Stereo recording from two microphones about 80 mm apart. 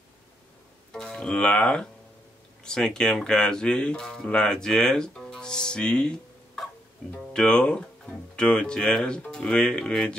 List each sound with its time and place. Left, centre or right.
0.9 s speech: centre